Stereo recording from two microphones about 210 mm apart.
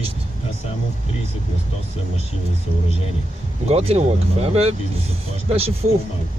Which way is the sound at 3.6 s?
30° right (ahead or behind).